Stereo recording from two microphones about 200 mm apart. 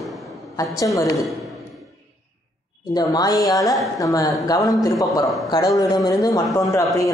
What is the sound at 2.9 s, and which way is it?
A man's voice, 20° left (ahead or behind).